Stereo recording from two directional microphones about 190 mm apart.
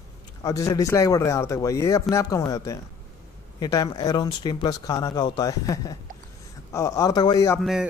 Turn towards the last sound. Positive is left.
turn(degrees=15)  # may be behind; listen again after turning